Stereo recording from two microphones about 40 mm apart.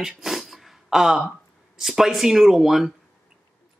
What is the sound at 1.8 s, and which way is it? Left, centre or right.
Speech, centre.